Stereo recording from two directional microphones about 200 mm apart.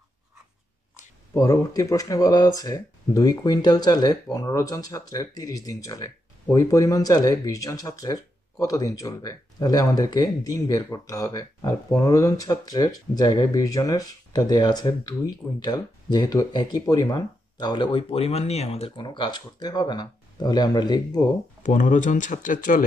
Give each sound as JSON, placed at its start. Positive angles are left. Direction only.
{"t": 1.3, "sound": "speech", "side_deg": 15}
{"t": 21.6, "sound": "speech", "side_deg": 40}